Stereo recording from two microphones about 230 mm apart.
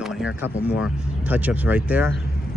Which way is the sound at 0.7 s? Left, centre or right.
Centre.